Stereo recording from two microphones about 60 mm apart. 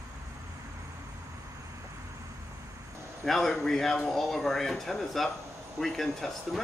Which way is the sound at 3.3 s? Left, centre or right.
Centre.